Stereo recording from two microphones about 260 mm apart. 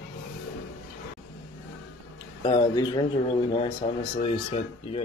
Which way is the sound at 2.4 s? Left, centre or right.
Centre.